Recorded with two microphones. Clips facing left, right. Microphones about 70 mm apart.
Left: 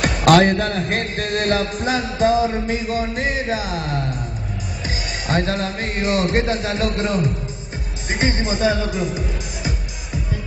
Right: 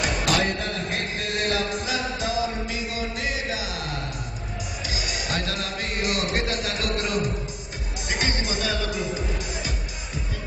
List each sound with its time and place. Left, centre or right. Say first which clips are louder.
0.0 s music: left 10 dB; left
4.8 s a man's voice: left 5 dB; left